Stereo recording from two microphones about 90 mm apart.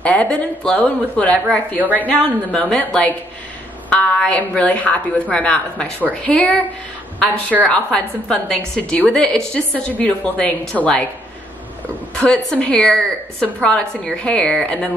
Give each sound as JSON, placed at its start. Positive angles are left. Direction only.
{"t": 0.0, "sound": "a woman's voice", "side_deg": 15}
{"t": 7.6, "sound": "a woman's voice", "side_deg": 10}
{"t": 12.2, "sound": "a woman's voice", "side_deg": 10}